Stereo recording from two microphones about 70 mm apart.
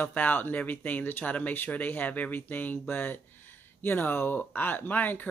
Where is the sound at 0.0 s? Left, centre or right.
Left.